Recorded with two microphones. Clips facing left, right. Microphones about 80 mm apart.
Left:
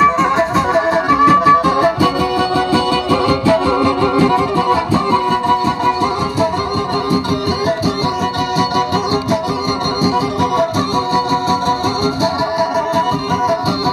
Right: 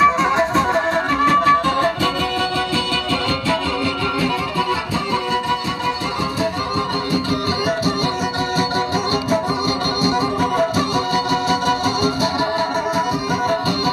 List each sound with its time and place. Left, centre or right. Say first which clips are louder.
0.0 s music: left 3 dB; centre
2.7 s music: left 7 dB; left